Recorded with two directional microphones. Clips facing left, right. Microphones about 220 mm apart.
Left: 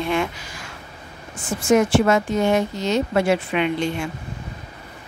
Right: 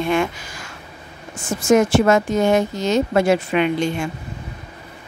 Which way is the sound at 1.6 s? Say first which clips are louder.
Right 2 dB; 45° right (ahead or behind).